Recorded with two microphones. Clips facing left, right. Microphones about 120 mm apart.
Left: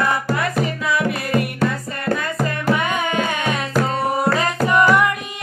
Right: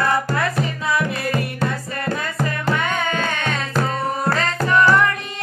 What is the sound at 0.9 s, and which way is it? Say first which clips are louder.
Music: left 3 dB; 30° right (ahead or behind).